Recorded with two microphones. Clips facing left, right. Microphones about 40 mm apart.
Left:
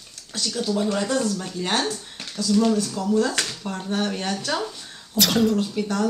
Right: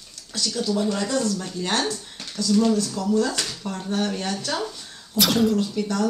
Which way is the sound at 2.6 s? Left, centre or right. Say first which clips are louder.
Even; left.